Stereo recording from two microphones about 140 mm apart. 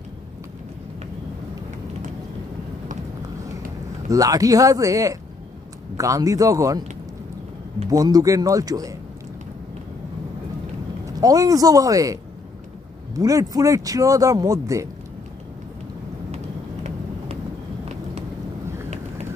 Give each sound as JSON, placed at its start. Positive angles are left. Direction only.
{"t": 4.1, "sound": "speech", "side_deg": -25}
{"t": 7.9, "sound": "speech", "side_deg": -25}
{"t": 11.1, "sound": "speech", "side_deg": -25}